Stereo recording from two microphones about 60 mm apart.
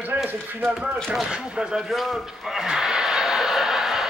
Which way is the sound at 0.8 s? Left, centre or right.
Centre.